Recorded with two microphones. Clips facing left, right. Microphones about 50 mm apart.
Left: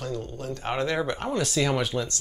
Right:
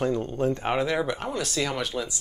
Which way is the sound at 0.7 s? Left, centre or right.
Centre.